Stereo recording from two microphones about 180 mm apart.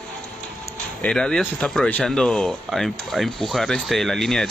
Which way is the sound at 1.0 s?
5° left (ahead or behind).